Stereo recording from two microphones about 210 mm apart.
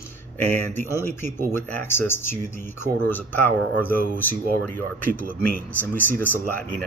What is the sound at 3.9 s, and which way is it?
Speech, 40° right (ahead or behind).